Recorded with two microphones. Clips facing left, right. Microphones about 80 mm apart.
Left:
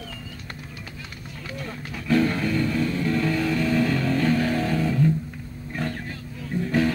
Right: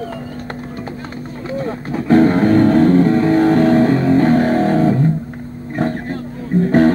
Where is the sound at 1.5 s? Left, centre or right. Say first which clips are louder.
Right 14 dB; right.